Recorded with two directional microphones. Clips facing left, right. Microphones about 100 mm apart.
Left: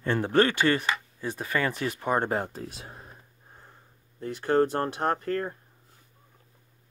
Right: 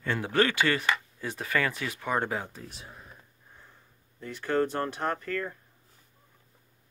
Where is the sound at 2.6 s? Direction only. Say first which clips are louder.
Left 5 dB; 45° left (ahead or behind).